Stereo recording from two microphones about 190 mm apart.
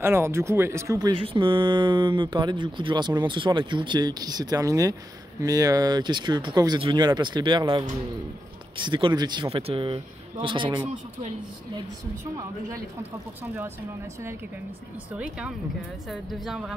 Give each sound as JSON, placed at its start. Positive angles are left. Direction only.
{"t": 0.0, "sound": "speech", "side_deg": -10}
{"t": 16.1, "sound": "a woman's voice", "side_deg": 0}